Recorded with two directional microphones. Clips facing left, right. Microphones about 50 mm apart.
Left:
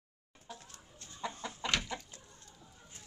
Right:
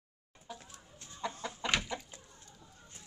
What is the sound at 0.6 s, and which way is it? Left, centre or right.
Chicken, right.